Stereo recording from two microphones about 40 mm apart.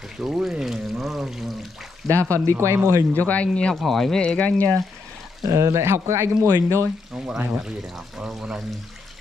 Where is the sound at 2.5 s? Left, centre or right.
Right.